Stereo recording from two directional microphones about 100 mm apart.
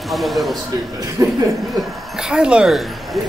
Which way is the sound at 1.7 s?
5° right (ahead or behind).